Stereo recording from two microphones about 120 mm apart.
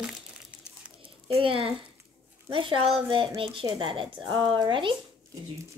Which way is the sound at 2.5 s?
45° right (ahead or behind).